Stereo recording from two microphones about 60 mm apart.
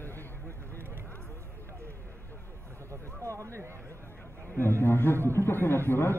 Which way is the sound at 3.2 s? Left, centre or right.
Right.